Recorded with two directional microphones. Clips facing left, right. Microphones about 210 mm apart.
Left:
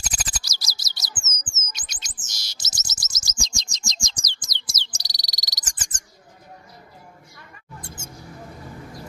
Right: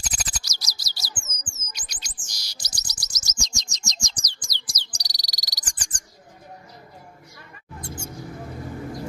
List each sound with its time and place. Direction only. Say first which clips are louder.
0.0 s chirp: left 1 dB; 30° left (ahead or behind)